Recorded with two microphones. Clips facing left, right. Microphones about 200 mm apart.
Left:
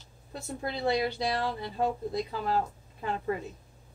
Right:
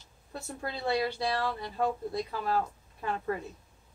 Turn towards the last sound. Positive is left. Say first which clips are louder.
# left 1 dB
turn(degrees=20)  # may be behind; listen again after turning